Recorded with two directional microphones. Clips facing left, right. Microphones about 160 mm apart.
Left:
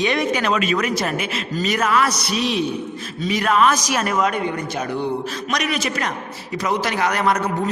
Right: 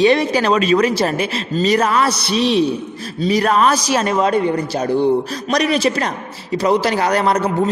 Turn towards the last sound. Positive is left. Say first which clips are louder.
# right 4 dB
turn(degrees=-30)  # may be behind; listen again after turning